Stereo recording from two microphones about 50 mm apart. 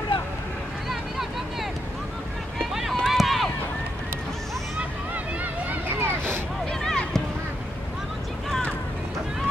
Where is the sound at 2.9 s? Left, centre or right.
Centre.